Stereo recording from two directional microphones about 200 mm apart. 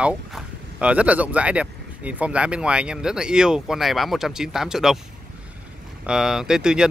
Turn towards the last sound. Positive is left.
turn(degrees=-5)  # may be behind; listen again after turning